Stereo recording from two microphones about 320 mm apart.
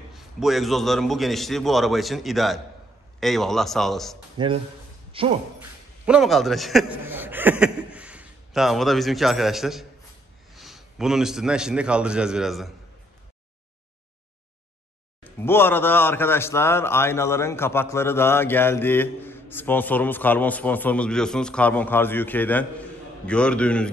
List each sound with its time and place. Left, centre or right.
0.1 s a man's voice: centre
5.1 s speech: centre
5.6 s a man's voice: centre
15.2 s a man's voice: centre